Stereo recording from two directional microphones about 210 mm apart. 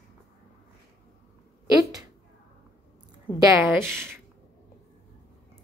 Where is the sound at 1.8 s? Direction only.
20° right (ahead or behind).